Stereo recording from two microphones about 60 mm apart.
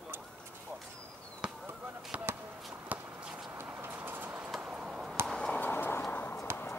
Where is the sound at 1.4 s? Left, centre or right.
Centre.